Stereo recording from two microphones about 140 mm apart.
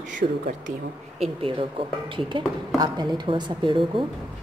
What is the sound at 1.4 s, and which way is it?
A woman's voice, 40° right (ahead or behind).